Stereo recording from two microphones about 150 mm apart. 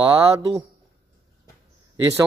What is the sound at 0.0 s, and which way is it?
Speech, 35° right (ahead or behind).